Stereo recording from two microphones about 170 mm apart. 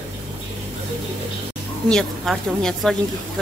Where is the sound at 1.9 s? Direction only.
5° left (ahead or behind).